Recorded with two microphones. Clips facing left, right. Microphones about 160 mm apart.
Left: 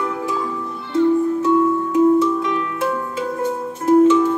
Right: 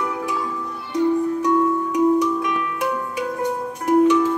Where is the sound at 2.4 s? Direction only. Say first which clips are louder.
Left 2 dB; 25° left (ahead or behind).